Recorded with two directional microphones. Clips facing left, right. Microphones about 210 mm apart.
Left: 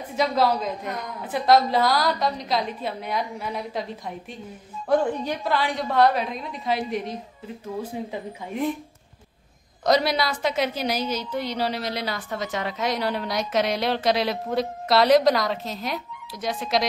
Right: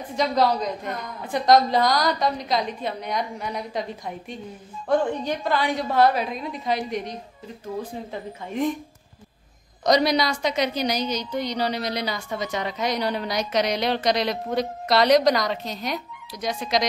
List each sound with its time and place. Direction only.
0.0 s a woman's voice: 5° left (ahead or behind)
9.8 s a woman's voice: 5° left (ahead or behind)